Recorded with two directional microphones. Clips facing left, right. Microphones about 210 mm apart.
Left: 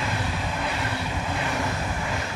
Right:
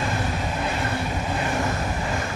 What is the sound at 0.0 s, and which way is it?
Vehicle, 45° right (ahead or behind).